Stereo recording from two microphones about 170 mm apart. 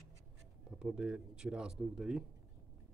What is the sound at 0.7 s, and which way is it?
Speech, 5° right (ahead or behind).